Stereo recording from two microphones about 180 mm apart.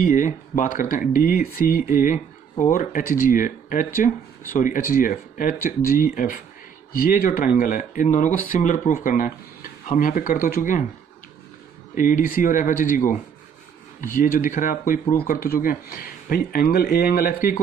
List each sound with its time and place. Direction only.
0.0 s speech: 45° left (ahead or behind)
11.9 s speech: 50° left (ahead or behind)